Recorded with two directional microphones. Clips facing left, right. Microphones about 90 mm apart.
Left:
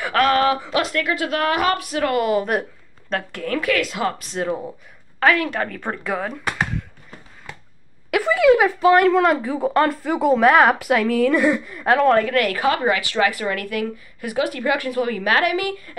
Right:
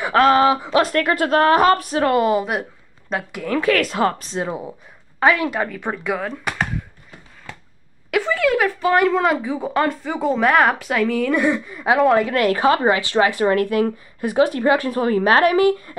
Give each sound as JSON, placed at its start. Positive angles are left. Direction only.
{"t": 0.0, "sound": "a woman's voice", "side_deg": -25}
{"t": 0.8, "sound": "a woman's voice", "side_deg": -45}
{"t": 3.1, "sound": "speech", "side_deg": -15}
{"t": 3.7, "sound": "a woman's voice", "side_deg": -40}
{"t": 5.2, "sound": "speech", "side_deg": -15}
{"t": 5.7, "sound": "a woman's voice", "side_deg": -5}
{"t": 8.1, "sound": "speech", "side_deg": 10}
{"t": 8.8, "sound": "a woman's voice", "side_deg": 0}
{"t": 12.3, "sound": "a woman's voice", "side_deg": -25}